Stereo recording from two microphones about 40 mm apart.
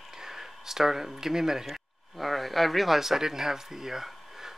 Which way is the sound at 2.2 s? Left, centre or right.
Centre.